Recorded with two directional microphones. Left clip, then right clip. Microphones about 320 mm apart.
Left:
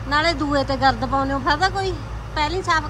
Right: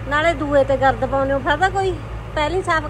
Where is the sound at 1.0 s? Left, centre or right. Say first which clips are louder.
Right 2 dB; centre.